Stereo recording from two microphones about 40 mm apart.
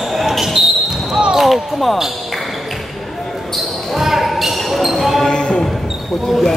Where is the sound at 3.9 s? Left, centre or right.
Centre.